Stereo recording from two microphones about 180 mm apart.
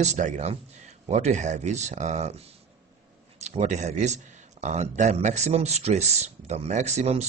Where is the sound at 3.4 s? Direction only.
40° right (ahead or behind).